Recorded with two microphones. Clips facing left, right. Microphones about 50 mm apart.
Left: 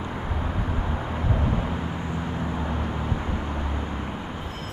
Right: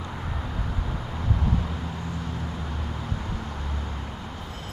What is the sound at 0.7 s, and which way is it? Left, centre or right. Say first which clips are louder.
Vehicle: left 4 dB; left.